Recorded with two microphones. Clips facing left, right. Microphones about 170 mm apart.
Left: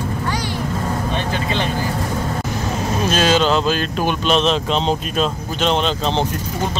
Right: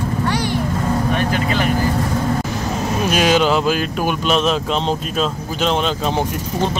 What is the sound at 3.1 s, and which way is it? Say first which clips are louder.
Speech: right 1 dB; 15° right (ahead or behind).